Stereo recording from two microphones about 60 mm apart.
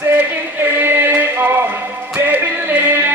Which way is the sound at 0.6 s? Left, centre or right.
Right.